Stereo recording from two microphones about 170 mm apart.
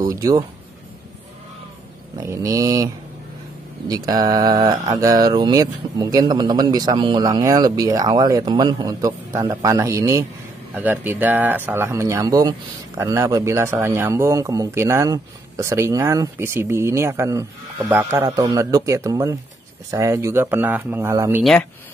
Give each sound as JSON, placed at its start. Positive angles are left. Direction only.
{"t": 0.0, "sound": "mantra", "side_deg": -20}
{"t": 2.1, "sound": "mantra", "side_deg": -20}
{"t": 10.7, "sound": "speech", "side_deg": -10}
{"t": 21.4, "sound": "speech", "side_deg": 0}